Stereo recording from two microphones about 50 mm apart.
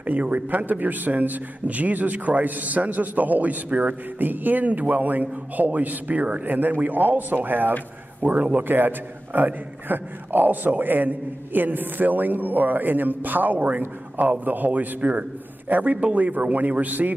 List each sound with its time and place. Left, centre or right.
0.0 s a man's voice: right
8.6 s a man's voice: right